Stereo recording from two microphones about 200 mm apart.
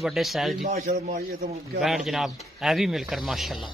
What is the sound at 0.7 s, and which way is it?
Speech, 45° right (ahead or behind).